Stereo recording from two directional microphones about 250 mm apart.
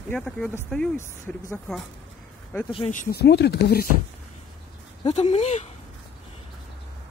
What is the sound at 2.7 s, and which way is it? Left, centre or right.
Speech, left.